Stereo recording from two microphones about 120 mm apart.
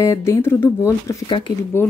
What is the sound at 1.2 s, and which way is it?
Speech, 40° left (ahead or behind).